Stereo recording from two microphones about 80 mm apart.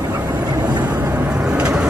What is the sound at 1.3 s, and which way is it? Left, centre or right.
Vehicle, centre.